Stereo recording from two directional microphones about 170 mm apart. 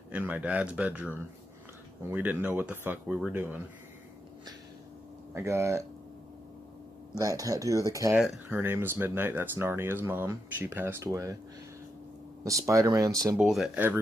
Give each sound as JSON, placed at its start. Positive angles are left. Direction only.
{"t": 0.1, "sound": "speech", "side_deg": -10}
{"t": 5.3, "sound": "speech", "side_deg": -15}
{"t": 7.2, "sound": "speech", "side_deg": -20}
{"t": 12.6, "sound": "speech", "side_deg": -20}
{"t": 13.4, "sound": "speech", "side_deg": 0}